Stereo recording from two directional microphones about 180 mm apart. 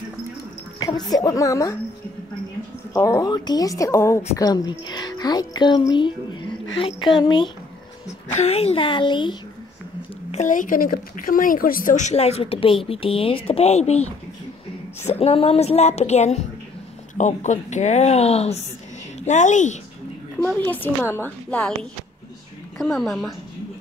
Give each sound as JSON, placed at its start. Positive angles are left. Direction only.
{"t": 0.7, "sound": "a sound", "side_deg": 20}
{"t": 1.1, "sound": "a woman's voice", "side_deg": 20}
{"t": 2.9, "sound": "a woman's voice", "side_deg": 20}
{"t": 8.3, "sound": "a woman's voice", "side_deg": 35}
{"t": 10.3, "sound": "a woman's voice", "side_deg": 45}
{"t": 20.3, "sound": "a woman's voice", "side_deg": 5}
{"t": 22.8, "sound": "a woman's voice", "side_deg": 0}